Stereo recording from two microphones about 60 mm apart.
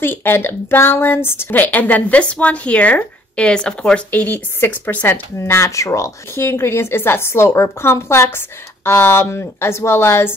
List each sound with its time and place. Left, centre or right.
0.0 s a woman's voice: left
1.5 s speech: left; by 4.0 s centre
4.6 s a woman's voice: left
5.4 s speech: left
6.3 s a woman's voice: left